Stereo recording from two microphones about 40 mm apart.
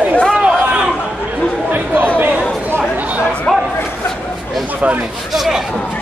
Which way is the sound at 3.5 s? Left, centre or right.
Centre.